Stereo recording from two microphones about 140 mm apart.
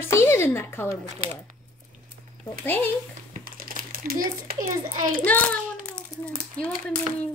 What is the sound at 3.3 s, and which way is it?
A child's voice, 90° right.